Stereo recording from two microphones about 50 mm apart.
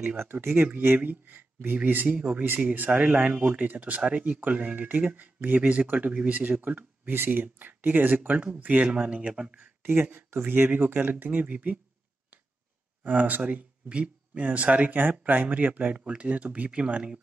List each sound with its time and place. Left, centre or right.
0.2 s speech: right
2.0 s speech: centre
2.4 s speech: right; by 9.5 s centre
10.3 s speech: right
13.0 s speech: right